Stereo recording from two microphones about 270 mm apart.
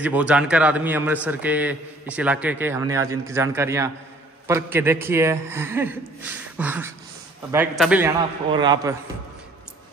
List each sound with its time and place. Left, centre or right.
0.0 s a man's voice: centre
8.5 s a man's voice: centre